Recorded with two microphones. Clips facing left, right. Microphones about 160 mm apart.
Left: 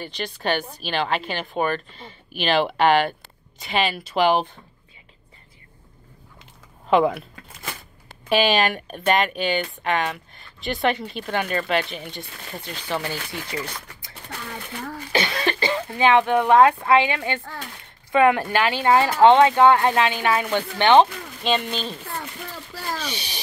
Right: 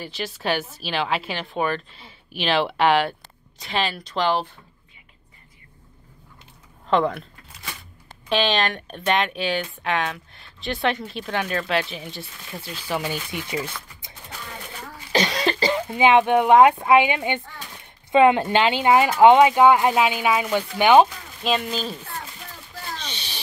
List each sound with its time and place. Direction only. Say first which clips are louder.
0.0 s a woman's voice: left 1 dB; 5° right (ahead or behind); by 4.5 s 15° left (ahead or behind)
6.9 s a woman's voice: left 2 dB; 5° left (ahead or behind)
8.3 s a woman's voice: left 3 dB; 10° left (ahead or behind); by 13.7 s 15° right (ahead or behind)
15.1 s cough: right 2 dB; 35° right (ahead or behind)
15.7 s speech: right 1 dB; 15° right (ahead or behind)
23.0 s a sound: left 4 dB; 10° left (ahead or behind)